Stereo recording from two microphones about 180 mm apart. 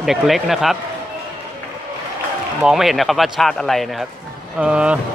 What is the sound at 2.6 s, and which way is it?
Speech, centre (ahead or behind).